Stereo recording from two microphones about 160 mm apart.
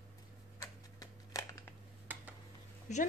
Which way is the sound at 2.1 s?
10° right (ahead or behind).